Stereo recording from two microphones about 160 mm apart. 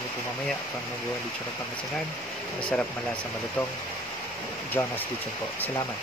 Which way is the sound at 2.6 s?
5° left (ahead or behind).